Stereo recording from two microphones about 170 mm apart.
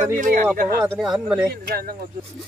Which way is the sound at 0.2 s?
50° right (ahead or behind).